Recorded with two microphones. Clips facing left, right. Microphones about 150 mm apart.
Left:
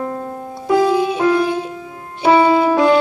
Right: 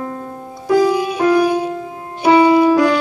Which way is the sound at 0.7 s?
25° left (ahead or behind).